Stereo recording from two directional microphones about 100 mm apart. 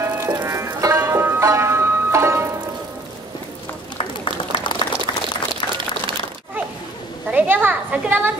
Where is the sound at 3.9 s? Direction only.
55° left (ahead or behind).